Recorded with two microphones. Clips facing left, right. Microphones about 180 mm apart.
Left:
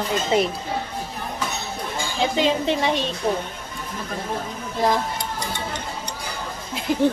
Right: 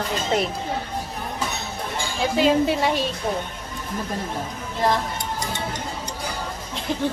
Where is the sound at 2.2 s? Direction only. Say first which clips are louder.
Right 2 dB; 5° right (ahead or behind).